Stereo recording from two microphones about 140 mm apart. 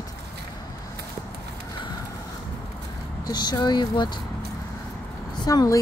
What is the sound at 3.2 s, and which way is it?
Speech, 30° left (ahead or behind).